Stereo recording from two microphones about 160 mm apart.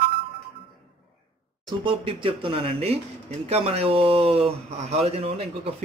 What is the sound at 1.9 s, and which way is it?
Speech, 35° right (ahead or behind).